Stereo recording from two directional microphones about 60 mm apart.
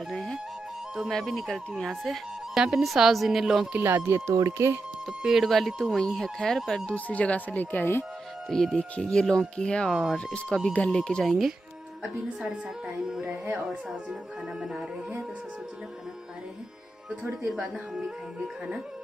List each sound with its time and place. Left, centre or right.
0.1 s music: centre
1.1 s speech: centre
3.7 s speech: right
5.0 s speech: centre
6.9 s speech: left
8.5 s speech: centre
11.2 s a woman's voice: centre
13.6 s a woman's voice: centre
17.1 s speech: right